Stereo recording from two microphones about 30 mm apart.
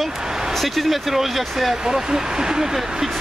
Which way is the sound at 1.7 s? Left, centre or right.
Right.